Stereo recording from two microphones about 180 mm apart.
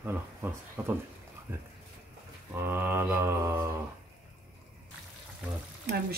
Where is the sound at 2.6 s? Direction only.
10° right (ahead or behind).